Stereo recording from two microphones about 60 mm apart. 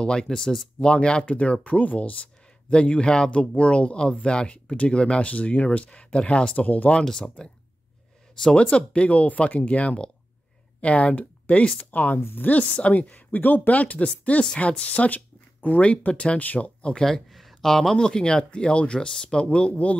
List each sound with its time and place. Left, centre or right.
0.0 s speech: centre
7.0 s speech: centre
8.5 s speech: centre
11.9 s speech: left
17.0 s speech: centre